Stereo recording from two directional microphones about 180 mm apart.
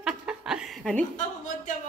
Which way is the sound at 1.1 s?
45° left (ahead or behind).